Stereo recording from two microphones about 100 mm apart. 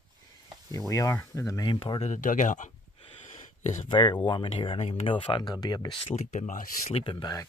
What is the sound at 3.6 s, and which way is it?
Speech, 60° left (ahead or behind).